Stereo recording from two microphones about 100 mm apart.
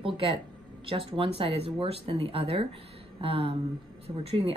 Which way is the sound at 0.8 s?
65° right (ahead or behind).